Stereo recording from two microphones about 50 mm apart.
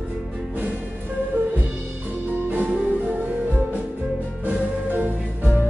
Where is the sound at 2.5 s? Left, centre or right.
Right.